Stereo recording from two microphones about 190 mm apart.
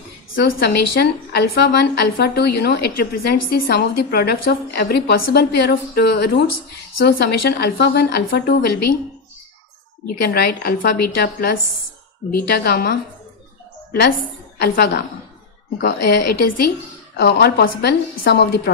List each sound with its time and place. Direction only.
0.3 s a woman's voice: 60° left (ahead or behind)
10.0 s a woman's voice: 55° left (ahead or behind)
15.8 s a woman's voice: 60° left (ahead or behind)